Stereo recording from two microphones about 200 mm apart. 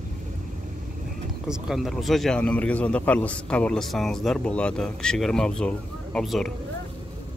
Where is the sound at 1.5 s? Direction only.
Centre (ahead or behind).